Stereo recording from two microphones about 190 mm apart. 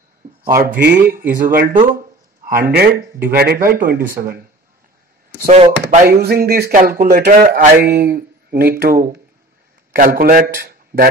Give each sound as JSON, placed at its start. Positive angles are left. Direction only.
{"t": 0.6, "sound": "speech", "side_deg": -50}
{"t": 5.5, "sound": "speech", "side_deg": -35}
{"t": 6.0, "sound": "a man's voice", "side_deg": -55}